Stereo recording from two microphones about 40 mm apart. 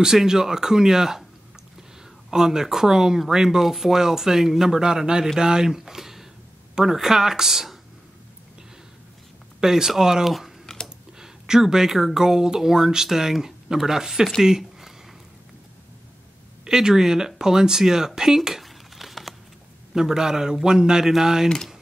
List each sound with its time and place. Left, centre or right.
0.0 s speech: centre
2.3 s speech: centre
9.6 s speech: centre
10.7 s a sound: centre
11.1 s speech: centre
14.4 s a sound: centre
16.6 s speech: centre
19.9 s speech: centre